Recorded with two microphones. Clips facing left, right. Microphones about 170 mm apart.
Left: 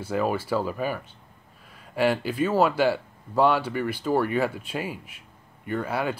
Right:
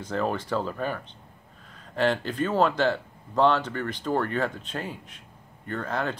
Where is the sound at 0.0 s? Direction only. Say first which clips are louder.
Left 2 dB; 10° left (ahead or behind).